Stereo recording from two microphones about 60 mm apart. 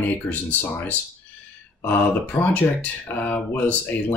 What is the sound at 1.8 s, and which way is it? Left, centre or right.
Speech, left.